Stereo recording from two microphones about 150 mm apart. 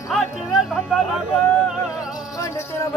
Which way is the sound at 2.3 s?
20° left (ahead or behind).